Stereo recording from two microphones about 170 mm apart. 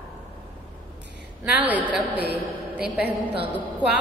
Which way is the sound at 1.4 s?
10° right (ahead or behind).